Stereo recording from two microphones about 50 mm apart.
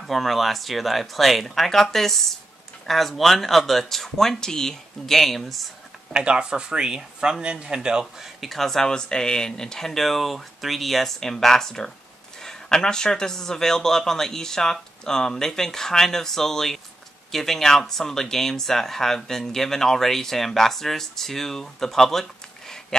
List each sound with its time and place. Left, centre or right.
0.0 s speech: centre
6.1 s speech: centre
8.4 s speech: centre